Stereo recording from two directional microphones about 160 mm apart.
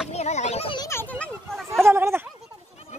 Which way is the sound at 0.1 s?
45° left (ahead or behind).